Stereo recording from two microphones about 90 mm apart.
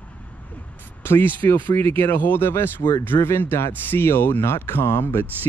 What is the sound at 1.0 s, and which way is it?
Speech, 25° left (ahead or behind).